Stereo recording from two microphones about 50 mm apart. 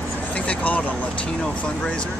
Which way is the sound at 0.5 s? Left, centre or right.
Left.